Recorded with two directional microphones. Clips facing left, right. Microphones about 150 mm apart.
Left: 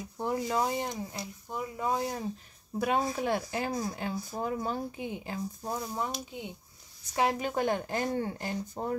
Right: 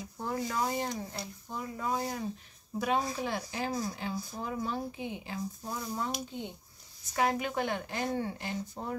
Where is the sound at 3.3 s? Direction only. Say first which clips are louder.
Left 3 dB; 50° left (ahead or behind).